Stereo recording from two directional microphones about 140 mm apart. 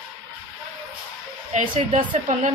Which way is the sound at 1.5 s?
60° right (ahead or behind).